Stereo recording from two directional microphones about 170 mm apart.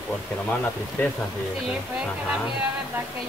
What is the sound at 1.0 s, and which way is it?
Speech, 10° left (ahead or behind).